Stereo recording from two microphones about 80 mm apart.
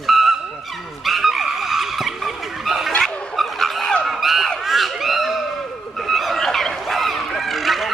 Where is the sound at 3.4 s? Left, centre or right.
Centre.